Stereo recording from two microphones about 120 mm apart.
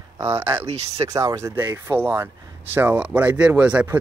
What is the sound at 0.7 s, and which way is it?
Speech, 60° right (ahead or behind).